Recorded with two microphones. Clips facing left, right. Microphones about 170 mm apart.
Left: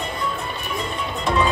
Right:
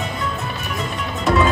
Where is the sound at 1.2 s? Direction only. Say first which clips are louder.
Right 4 dB; 5° right (ahead or behind).